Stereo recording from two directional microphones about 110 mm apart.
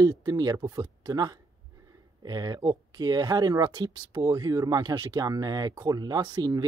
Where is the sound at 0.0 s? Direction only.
35° right (ahead or behind).